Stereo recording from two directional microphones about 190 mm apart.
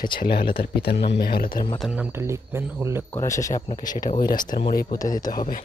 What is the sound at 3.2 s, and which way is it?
Speech, 15° left (ahead or behind).